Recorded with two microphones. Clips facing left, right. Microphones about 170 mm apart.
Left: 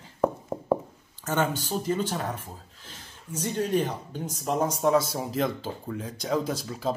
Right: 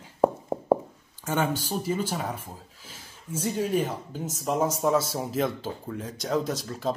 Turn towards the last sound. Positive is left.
turn(degrees=0)  # may be behind; listen again after turning